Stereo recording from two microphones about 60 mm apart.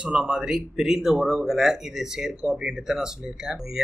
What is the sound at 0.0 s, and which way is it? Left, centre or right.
Speech, centre.